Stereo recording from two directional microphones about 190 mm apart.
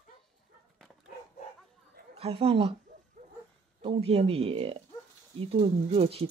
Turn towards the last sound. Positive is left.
turn(degrees=-30)  # may be behind; listen again after turning